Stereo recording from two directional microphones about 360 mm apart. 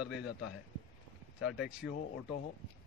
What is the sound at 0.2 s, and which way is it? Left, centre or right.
Speech, left.